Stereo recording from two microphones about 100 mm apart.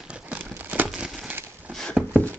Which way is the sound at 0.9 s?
5° right (ahead or behind).